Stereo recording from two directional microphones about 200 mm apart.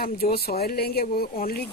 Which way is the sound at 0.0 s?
50° left (ahead or behind).